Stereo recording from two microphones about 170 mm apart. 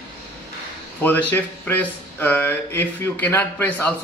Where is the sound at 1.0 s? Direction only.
10° left (ahead or behind).